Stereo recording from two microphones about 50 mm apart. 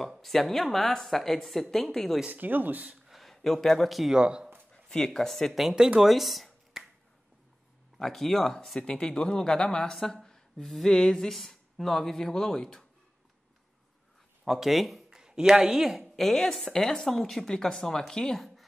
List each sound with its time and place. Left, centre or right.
0.2 s speech: centre
2.3 s speech: right
3.2 s speech: centre
4.1 s speech: centre
4.8 s speech: centre
5.9 s a sound: centre
8.0 s speech: centre
14.4 s speech: centre
15.0 s a sound: centre
15.7 s speech: centre
16.0 s speech: centre